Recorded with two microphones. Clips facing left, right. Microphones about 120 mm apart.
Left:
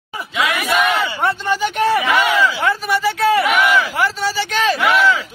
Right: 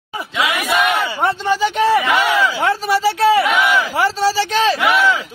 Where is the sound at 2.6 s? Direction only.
30° right (ahead or behind).